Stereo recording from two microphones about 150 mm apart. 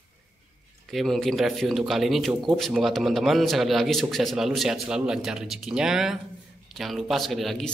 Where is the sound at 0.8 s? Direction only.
Centre (ahead or behind).